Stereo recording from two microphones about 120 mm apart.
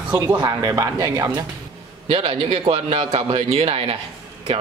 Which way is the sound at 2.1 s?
50° right (ahead or behind).